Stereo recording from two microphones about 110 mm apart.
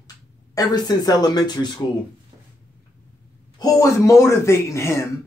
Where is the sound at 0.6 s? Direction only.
35° left (ahead or behind).